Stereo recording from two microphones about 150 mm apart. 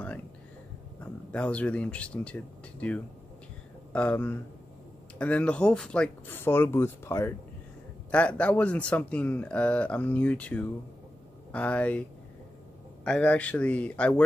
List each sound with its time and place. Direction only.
1.3 s speech: 10° left (ahead or behind)
3.9 s speech: 10° left (ahead or behind)